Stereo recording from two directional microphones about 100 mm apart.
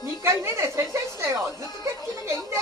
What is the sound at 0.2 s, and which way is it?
A woman's voice, 25° right (ahead or behind).